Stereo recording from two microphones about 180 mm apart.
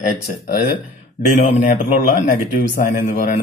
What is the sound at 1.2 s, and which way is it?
Speech, 45° left (ahead or behind).